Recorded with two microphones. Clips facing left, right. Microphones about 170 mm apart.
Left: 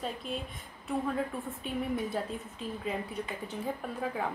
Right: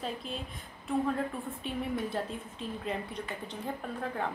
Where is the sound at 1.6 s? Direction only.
Centre (ahead or behind).